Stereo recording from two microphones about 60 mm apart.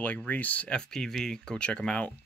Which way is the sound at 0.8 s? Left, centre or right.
Centre.